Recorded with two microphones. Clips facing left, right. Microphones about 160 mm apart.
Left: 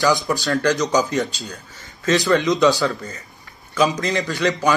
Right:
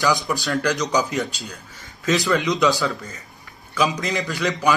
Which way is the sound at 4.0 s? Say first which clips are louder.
Left 3 dB; centre (ahead or behind).